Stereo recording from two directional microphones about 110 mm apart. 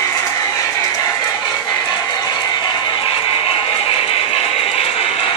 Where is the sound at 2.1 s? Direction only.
40° left (ahead or behind).